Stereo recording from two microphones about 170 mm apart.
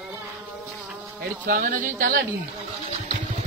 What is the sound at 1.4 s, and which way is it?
Speech, 55° right (ahead or behind).